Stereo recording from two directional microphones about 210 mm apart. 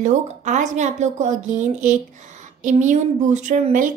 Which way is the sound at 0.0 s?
35° right (ahead or behind).